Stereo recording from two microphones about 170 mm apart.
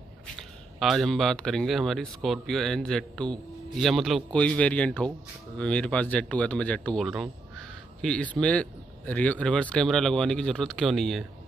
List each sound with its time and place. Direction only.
0.4 s speech: centre (ahead or behind)